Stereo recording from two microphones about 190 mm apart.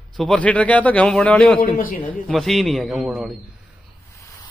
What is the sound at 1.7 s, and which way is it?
Speech, 45° left (ahead or behind).